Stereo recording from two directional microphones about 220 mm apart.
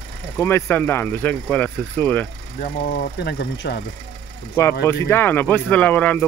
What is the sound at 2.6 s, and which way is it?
Speech, 45° left (ahead or behind).